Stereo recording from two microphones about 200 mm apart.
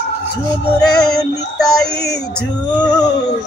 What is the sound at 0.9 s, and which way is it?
Music, centre (ahead or behind).